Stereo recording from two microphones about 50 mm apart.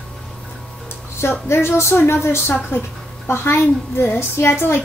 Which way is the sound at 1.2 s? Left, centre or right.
Left.